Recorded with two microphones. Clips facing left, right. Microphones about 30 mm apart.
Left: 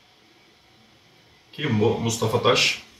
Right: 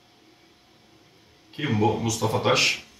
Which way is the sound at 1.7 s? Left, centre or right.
Centre.